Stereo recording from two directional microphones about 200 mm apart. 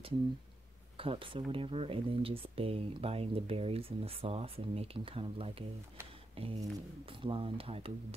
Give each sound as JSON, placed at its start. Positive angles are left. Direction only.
{"t": 0.9, "sound": "speech", "side_deg": -25}